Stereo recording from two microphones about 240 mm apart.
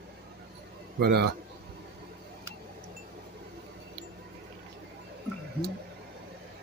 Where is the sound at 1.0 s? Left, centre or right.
Right.